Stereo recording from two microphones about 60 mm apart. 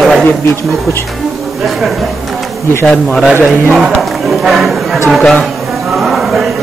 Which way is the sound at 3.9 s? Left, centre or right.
Centre.